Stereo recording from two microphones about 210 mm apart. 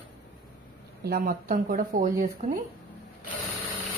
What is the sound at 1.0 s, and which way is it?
Speech, 45° right (ahead or behind).